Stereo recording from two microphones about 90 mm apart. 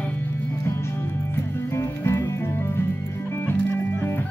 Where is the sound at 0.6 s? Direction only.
25° left (ahead or behind).